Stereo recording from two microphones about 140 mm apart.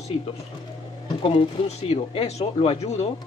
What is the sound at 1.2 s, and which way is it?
Speech, 45° left (ahead or behind).